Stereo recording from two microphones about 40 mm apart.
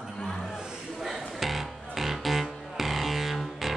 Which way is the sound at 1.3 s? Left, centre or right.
Centre.